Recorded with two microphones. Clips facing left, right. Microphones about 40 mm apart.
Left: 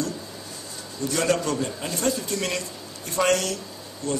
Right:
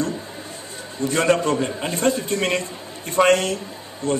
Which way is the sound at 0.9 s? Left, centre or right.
Right.